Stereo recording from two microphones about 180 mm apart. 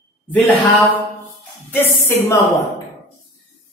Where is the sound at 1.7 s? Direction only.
10° left (ahead or behind).